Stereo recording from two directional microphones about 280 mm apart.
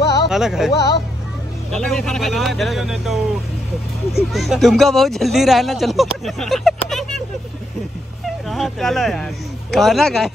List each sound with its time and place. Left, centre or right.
0.0 s music: left
0.3 s speech: centre
8.5 s a man's voice: centre